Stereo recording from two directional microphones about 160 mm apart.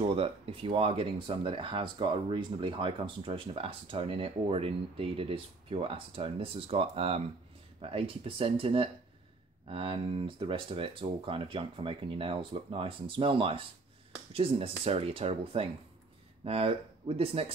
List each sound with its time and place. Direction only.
0.0 s speech: 35° right (ahead or behind)